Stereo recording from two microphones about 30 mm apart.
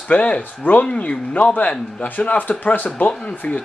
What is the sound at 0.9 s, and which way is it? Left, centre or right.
Speech, left.